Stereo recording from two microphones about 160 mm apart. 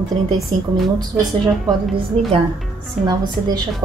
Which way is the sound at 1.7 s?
35° right (ahead or behind).